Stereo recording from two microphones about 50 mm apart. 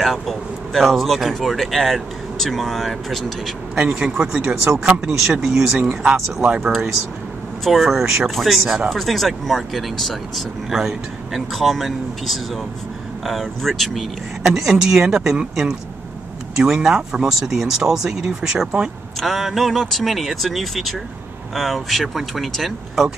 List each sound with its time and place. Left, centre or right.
0.0 s speech: centre
3.7 s speech: centre
6.6 s speech: centre
14.4 s speech: centre
19.1 s speech: centre